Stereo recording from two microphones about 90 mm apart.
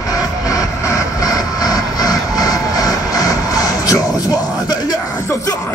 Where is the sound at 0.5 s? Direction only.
40° left (ahead or behind).